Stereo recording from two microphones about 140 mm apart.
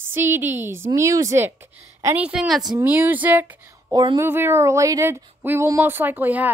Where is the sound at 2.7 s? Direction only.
15° right (ahead or behind).